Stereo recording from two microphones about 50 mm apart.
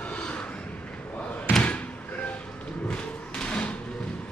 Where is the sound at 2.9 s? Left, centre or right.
Left.